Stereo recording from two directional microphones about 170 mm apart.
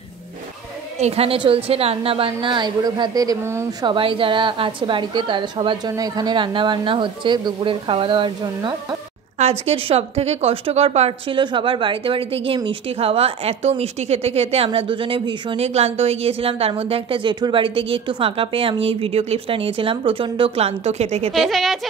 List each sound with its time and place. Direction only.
0.9 s a woman's voice: 40° right (ahead or behind)
21.3 s a woman's voice: centre (ahead or behind)